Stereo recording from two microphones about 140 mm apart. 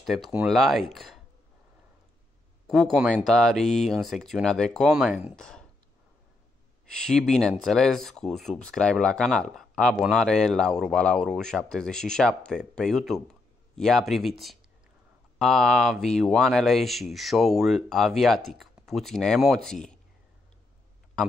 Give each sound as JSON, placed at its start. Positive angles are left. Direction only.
{"t": 0.0, "sound": "speech", "side_deg": 0}
{"t": 2.6, "sound": "speech", "side_deg": 0}
{"t": 6.9, "sound": "speech", "side_deg": 5}
{"t": 15.3, "sound": "speech", "side_deg": 0}